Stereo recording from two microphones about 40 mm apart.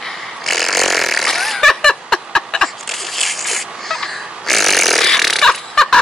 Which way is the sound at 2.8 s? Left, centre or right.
Centre.